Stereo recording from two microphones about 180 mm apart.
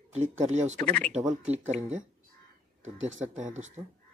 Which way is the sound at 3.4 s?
40° right (ahead or behind).